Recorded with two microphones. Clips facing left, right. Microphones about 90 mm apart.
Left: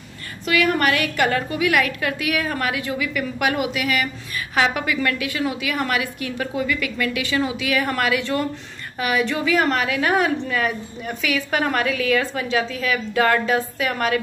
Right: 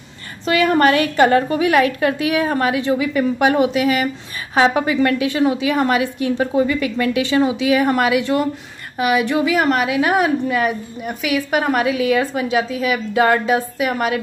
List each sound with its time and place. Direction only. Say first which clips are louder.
0.5 s a woman's voice: right 5 dB; 30° right (ahead or behind); by 14.2 s 15° right (ahead or behind)